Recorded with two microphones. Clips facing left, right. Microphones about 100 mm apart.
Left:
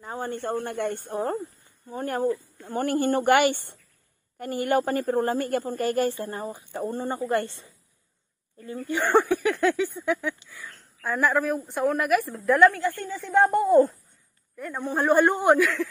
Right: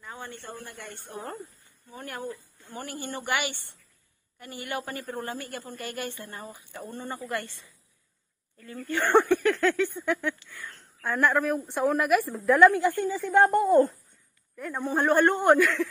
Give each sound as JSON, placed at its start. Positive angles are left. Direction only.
{"t": 0.0, "sound": "a woman's voice", "side_deg": 40}
{"t": 8.5, "sound": "a sound", "side_deg": 20}
{"t": 9.1, "sound": "a sound", "side_deg": 5}
{"t": 10.0, "sound": "speech", "side_deg": 0}
{"t": 12.7, "sound": "a woman's voice", "side_deg": -15}
{"t": 13.1, "sound": "speech", "side_deg": 0}